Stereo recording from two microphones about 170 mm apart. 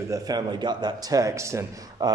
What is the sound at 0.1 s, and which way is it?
A man's voice, 20° right (ahead or behind).